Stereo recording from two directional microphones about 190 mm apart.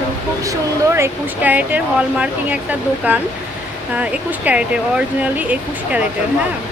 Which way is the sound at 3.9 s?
5° right (ahead or behind).